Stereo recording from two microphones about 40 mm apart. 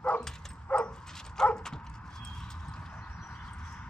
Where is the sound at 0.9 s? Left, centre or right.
Centre.